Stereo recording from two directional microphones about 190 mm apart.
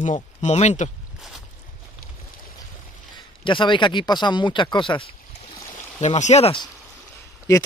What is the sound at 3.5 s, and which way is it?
Speech, 25° left (ahead or behind).